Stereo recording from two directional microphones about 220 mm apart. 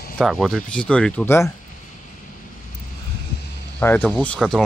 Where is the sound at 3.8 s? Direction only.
5° left (ahead or behind).